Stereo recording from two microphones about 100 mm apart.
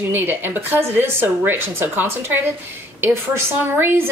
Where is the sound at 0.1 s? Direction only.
20° right (ahead or behind).